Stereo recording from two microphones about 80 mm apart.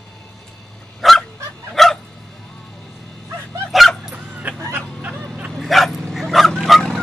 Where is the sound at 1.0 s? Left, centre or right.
Centre.